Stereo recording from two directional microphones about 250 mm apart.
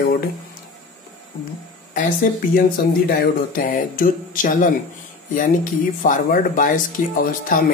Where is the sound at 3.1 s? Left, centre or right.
Left.